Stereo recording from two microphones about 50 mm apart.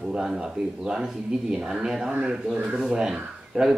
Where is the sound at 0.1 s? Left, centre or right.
Centre.